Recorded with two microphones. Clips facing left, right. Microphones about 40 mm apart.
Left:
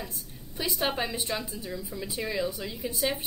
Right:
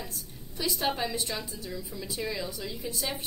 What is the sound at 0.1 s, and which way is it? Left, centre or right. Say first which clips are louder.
A woman's voice: even; centre.